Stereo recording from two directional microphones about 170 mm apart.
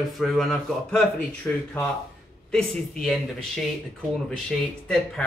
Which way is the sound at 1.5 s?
10° left (ahead or behind).